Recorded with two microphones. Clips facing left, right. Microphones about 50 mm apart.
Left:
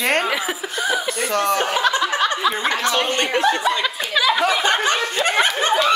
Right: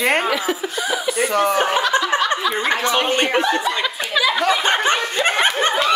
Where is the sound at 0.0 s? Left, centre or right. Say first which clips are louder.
Right 2 dB; centre.